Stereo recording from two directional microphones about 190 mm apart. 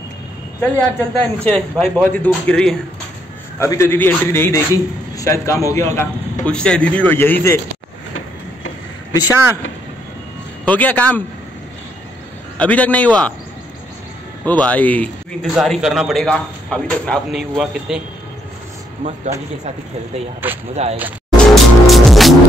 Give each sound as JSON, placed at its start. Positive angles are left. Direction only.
{"t": 0.6, "sound": "a man's voice", "side_deg": 5}
{"t": 9.1, "sound": "speech", "side_deg": 20}
{"t": 10.6, "sound": "a man's voice", "side_deg": 10}
{"t": 12.5, "sound": "a man's voice", "side_deg": 10}
{"t": 14.4, "sound": "a man's voice", "side_deg": 10}
{"t": 20.7, "sound": "speech", "side_deg": -35}
{"t": 21.0, "sound": "music", "side_deg": 0}